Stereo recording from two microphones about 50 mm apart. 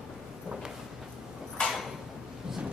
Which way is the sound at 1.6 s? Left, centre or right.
Centre.